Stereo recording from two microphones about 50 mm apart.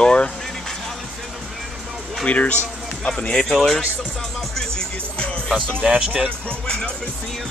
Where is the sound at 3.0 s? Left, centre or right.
Centre.